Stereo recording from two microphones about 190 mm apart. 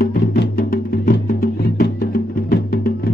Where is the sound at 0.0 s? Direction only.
50° left (ahead or behind).